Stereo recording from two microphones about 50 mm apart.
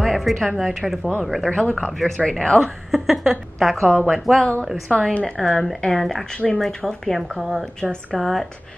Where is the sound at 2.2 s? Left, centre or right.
Centre.